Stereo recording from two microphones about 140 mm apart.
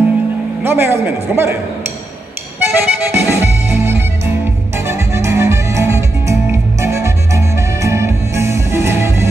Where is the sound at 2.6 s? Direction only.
20° right (ahead or behind).